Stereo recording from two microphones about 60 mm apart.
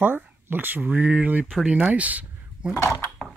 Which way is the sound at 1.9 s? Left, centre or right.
Right.